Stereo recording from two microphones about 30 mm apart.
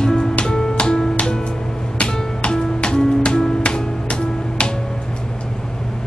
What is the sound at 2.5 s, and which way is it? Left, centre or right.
Music, left.